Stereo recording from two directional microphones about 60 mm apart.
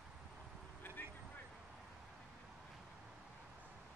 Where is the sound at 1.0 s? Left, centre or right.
Left.